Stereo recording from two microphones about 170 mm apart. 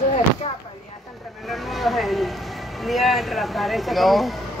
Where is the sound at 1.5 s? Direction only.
Centre (ahead or behind).